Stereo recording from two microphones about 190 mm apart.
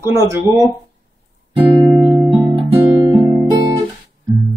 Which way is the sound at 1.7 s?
25° right (ahead or behind).